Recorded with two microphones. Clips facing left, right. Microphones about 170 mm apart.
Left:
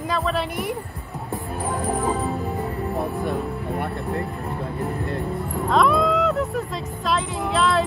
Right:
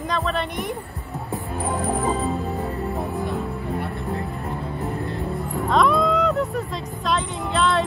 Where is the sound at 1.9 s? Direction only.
Centre (ahead or behind).